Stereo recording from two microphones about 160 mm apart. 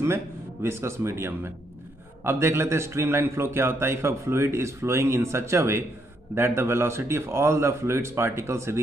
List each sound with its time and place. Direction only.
0.0 s a man's voice: 15° right (ahead or behind)